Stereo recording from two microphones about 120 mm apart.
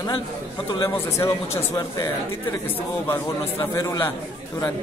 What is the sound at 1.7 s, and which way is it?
Speech, 30° left (ahead or behind).